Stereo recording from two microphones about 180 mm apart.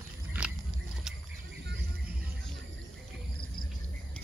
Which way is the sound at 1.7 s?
65° right (ahead or behind).